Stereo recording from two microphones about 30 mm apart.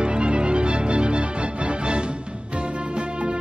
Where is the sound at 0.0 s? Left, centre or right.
Right.